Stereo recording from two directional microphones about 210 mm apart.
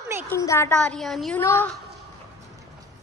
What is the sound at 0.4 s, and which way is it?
A woman's voice, 15° left (ahead or behind).